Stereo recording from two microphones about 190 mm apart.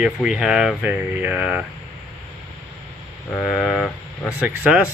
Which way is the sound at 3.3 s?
Centre (ahead or behind).